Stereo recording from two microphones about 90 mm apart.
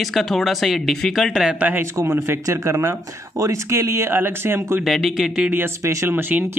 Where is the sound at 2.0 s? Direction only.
30° right (ahead or behind).